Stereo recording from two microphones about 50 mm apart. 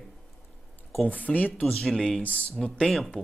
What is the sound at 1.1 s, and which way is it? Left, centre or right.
Speech, left.